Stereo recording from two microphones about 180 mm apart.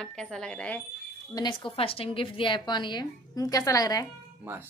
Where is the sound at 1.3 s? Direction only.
25° left (ahead or behind).